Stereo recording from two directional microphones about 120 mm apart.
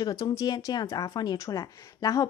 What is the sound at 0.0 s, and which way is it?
Speech, 30° left (ahead or behind).